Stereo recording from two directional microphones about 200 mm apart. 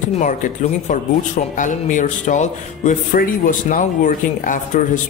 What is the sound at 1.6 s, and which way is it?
Speech, 40° left (ahead or behind).